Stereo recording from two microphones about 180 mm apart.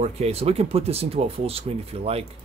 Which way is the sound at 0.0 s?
35° right (ahead or behind).